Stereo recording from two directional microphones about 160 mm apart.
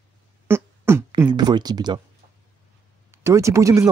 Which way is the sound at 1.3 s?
25° right (ahead or behind).